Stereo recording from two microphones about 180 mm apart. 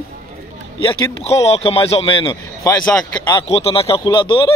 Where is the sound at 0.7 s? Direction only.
35° left (ahead or behind).